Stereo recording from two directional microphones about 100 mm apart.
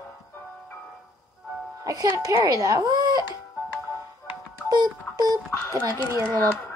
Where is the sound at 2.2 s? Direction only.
40° right (ahead or behind).